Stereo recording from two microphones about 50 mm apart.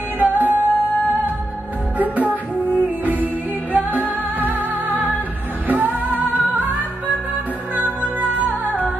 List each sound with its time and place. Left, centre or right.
0.2 s music: right
2.0 s music: right
8.4 s music: right